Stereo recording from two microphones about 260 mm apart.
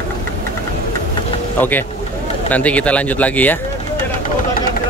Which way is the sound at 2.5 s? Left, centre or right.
Centre.